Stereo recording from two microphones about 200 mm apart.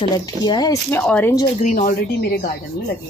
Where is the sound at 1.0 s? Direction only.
5° left (ahead or behind).